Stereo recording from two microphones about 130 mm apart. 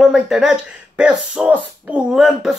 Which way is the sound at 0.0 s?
5° right (ahead or behind).